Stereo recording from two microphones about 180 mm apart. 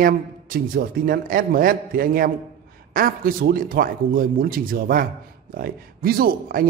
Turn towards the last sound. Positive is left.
turn(degrees=-55)  # may be behind; listen again after turning